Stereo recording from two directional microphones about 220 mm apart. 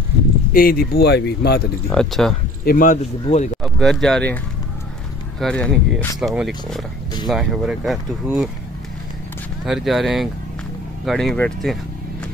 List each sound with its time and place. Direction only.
0.5 s speech: 40° left (ahead or behind)
1.9 s speech: centre (ahead or behind)
2.6 s speech: 40° left (ahead or behind)
3.6 s speech: centre (ahead or behind)
5.4 s speech: 5° left (ahead or behind)
9.7 s speech: centre (ahead or behind)